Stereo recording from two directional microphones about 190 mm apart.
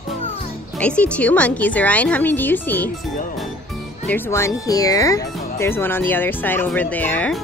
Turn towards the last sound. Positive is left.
turn(degrees=10)  # may be behind; listen again after turning